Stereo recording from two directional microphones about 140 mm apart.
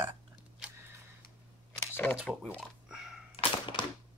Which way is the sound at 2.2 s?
5° left (ahead or behind).